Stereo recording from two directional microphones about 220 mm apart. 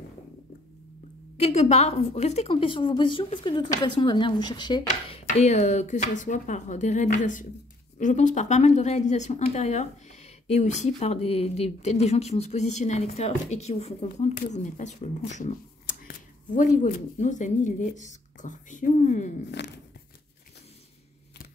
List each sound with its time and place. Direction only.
1.4 s a woman's voice: 30° left (ahead or behind)
4.8 s speech: 35° left (ahead or behind)
19.6 s a sound: 50° left (ahead or behind)